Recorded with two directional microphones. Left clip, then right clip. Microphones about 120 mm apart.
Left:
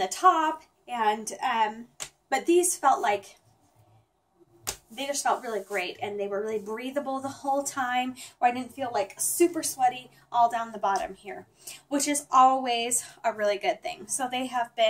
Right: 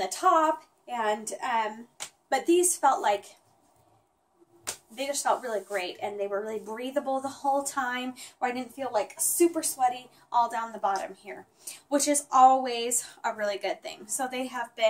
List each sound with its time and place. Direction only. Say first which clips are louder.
0.0 s a woman's voice: left 1 dB; 25° right (ahead or behind)
4.9 s a woman's voice: even; 25° right (ahead or behind)